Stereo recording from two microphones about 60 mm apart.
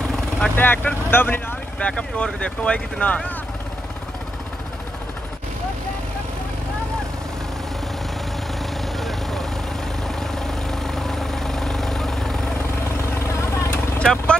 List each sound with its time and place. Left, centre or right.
0.6 s speech: left
1.8 s speech: centre
8.8 s vehicle: centre
13.2 s vehicle: left
13.9 s vehicle: centre